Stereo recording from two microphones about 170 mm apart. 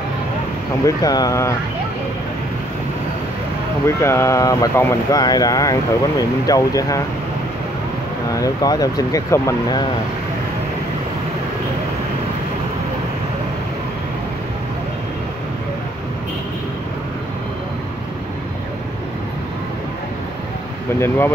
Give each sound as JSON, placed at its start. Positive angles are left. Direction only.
{"t": 0.8, "sound": "speech", "side_deg": 20}
{"t": 3.8, "sound": "speech", "side_deg": 15}
{"t": 8.3, "sound": "speech", "side_deg": 20}